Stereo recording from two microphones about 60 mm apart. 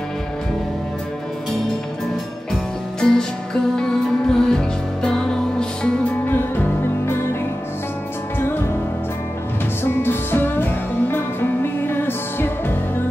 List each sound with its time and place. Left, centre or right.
3.0 s music: centre
6.2 s music: left
9.8 s music: left